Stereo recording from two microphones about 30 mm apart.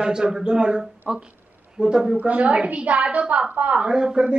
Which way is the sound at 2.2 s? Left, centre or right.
Right.